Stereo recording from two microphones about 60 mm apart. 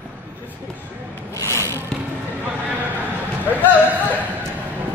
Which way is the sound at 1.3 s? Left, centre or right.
Left.